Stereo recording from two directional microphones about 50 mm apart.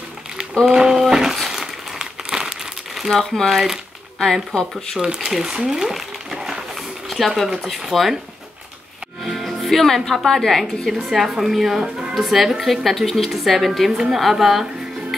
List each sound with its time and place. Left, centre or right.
0.7 s a sound: centre
1.1 s crumpling: centre
2.9 s crumpling: centre
3.4 s speech: centre
4.2 s speech: centre
5.0 s speech: centre
5.7 s a sound: centre
7.1 s a woman's voice: centre
9.2 s a woman's voice: centre
10.9 s a woman's voice: centre